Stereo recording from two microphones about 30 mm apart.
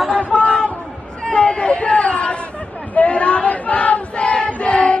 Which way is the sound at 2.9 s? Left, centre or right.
Left.